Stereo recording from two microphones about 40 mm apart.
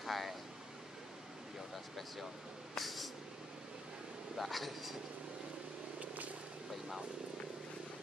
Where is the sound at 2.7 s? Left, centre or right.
Centre.